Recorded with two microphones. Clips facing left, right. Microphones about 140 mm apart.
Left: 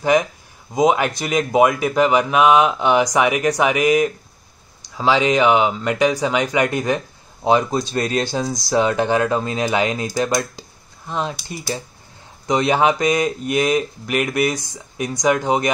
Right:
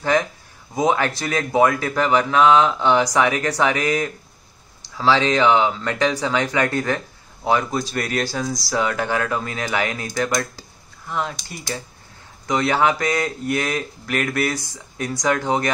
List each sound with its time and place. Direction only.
0.0 s speech: 15° left (ahead or behind)
12.4 s speech: 20° left (ahead or behind)